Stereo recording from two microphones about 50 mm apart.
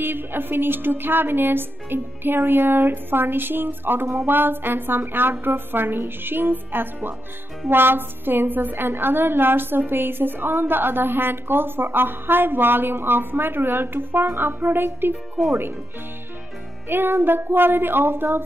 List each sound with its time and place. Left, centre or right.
0.0 s a woman's voice: right
16.9 s a woman's voice: right